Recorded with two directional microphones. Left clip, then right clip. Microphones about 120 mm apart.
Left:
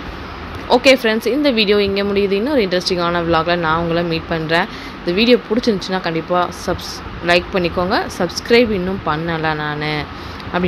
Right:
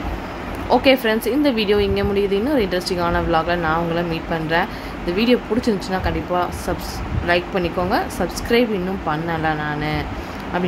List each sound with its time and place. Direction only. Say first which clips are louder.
0.7 s a woman's voice: left 3 dB; 15° left (ahead or behind)